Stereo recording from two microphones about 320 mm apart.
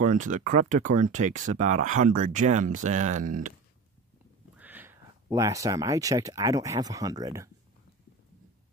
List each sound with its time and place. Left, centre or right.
0.0 s speech: right
4.6 s speech: centre